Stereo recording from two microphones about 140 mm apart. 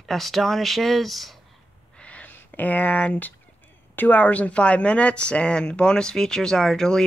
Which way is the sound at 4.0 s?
10° left (ahead or behind).